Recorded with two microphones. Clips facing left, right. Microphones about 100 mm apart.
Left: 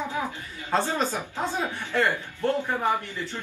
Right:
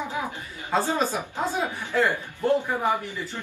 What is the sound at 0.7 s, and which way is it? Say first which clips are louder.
Speech: right 1 dB; 10° right (ahead or behind).